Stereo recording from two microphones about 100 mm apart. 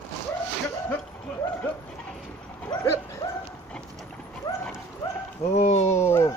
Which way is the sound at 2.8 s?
30° left (ahead or behind).